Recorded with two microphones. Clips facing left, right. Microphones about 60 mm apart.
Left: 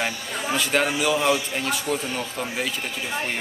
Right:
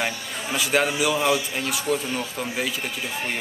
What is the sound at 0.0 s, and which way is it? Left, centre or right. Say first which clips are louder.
A man's voice: left 1 dB; centre.